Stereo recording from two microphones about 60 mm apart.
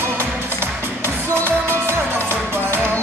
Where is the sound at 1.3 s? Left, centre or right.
Right.